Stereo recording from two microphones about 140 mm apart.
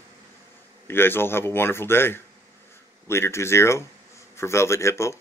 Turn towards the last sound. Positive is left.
turn(degrees=20)  # may be behind; listen again after turning